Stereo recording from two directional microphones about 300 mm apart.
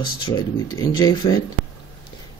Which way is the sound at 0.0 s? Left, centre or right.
Centre.